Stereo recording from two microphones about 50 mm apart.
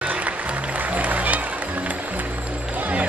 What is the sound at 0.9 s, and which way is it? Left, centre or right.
Music, right.